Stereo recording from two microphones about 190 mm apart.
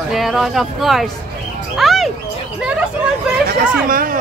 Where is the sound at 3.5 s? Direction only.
50° right (ahead or behind).